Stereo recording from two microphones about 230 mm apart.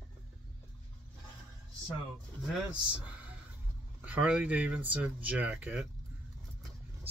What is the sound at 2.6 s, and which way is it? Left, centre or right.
Speech, centre.